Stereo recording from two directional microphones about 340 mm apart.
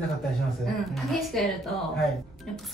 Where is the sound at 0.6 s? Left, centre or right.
Centre.